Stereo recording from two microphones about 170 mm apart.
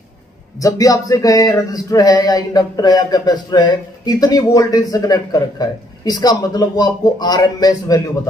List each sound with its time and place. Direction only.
0.6 s speech: 20° left (ahead or behind)